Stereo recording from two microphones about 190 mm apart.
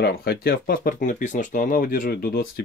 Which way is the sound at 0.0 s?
55° left (ahead or behind).